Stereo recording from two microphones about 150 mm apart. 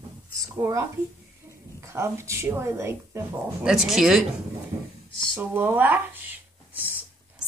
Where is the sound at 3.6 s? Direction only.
5° right (ahead or behind).